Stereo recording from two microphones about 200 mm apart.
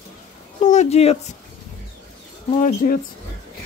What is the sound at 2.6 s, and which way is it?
Speech, 45° left (ahead or behind).